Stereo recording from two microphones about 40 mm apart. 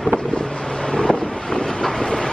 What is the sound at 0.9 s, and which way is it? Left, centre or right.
Vehicle, left.